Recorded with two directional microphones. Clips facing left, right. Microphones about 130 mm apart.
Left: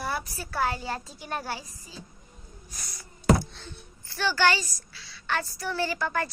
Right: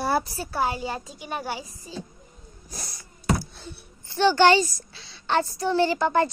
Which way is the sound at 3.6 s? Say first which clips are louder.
Right 3 dB; 10° right (ahead or behind).